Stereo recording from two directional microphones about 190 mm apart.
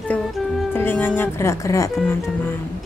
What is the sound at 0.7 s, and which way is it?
Speech, 10° left (ahead or behind).